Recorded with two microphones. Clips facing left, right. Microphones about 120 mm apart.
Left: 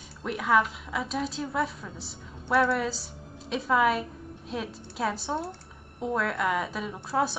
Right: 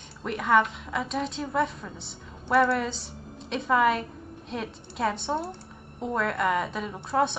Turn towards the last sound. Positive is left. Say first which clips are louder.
# right 2 dB
turn(degrees=0)  # may be behind; listen again after turning